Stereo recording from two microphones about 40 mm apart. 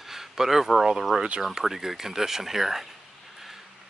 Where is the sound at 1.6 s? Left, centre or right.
Centre.